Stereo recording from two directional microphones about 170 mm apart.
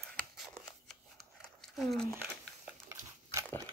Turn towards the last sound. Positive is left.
turn(degrees=-15)  # may be behind; listen again after turning